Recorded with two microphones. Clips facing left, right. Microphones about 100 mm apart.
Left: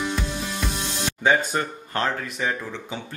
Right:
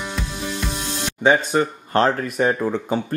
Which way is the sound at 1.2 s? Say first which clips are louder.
Right 5 dB; 20° right (ahead or behind).